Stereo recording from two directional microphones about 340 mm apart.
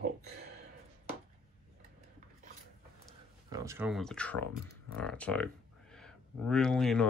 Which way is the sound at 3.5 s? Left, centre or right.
Centre.